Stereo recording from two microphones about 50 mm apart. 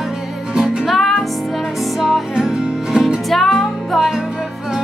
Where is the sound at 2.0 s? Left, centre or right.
Centre.